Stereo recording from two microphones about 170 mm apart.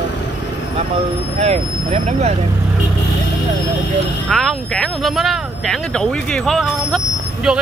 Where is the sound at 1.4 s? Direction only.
40° right (ahead or behind).